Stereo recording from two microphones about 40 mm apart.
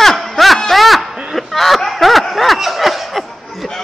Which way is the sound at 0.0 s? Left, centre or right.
Centre.